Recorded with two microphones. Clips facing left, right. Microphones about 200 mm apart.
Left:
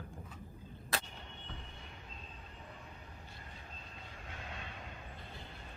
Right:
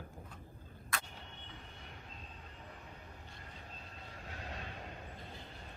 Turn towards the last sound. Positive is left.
turn(degrees=-35)  # may be behind; listen again after turning